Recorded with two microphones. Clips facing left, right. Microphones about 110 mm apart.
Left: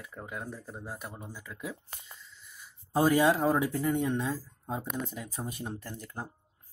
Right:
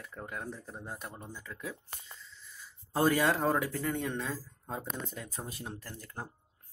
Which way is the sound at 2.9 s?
15° left (ahead or behind).